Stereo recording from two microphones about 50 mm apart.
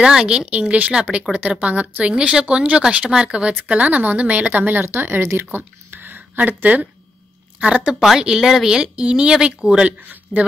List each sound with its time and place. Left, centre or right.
0.0 s speech: centre
0.5 s a woman's voice: right
2.1 s a woman's voice: centre; by 4.8 s right
4.8 s speech: right
5.9 s a sound: right
7.6 s a woman's voice: right
7.9 s a woman's voice: centre; by 10.5 s right